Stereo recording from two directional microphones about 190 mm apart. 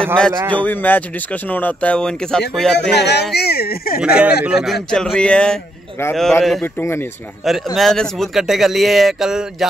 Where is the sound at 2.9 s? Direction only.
60° left (ahead or behind).